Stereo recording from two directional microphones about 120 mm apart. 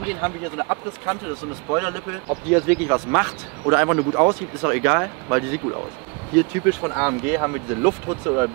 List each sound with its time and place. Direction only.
0.0 s speech: 15° right (ahead or behind)